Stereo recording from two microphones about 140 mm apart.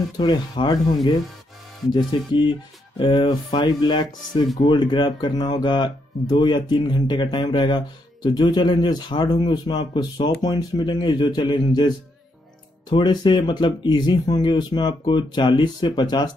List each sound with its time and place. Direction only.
0.2 s speech: 30° left (ahead or behind)
2.0 s speech: 30° left (ahead or behind)
12.9 s speech: 30° left (ahead or behind)